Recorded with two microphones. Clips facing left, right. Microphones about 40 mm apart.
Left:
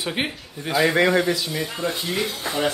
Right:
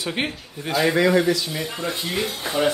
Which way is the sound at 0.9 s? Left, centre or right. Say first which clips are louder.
Right 2 dB; left.